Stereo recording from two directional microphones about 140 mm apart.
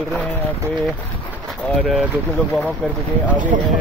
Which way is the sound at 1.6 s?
Centre (ahead or behind).